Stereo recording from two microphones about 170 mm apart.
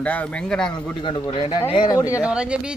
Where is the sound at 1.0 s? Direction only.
30° left (ahead or behind).